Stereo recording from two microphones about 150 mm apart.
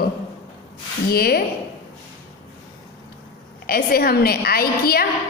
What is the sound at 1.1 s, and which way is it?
Speech, 90° left.